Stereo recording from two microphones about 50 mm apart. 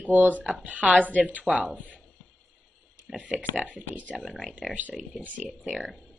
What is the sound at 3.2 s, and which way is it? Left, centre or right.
Speech, right.